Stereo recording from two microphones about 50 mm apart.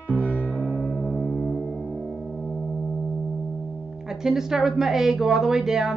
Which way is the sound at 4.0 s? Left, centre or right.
Centre.